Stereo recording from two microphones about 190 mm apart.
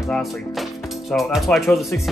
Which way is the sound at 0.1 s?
Centre (ahead or behind).